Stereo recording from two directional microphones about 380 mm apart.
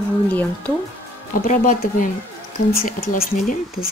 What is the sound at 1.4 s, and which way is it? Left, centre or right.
Speech, left.